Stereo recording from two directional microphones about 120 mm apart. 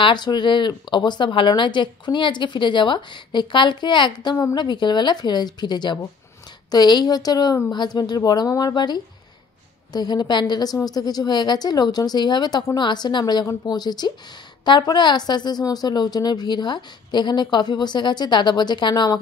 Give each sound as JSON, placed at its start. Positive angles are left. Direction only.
{"t": 0.0, "sound": "a woman's voice", "side_deg": 40}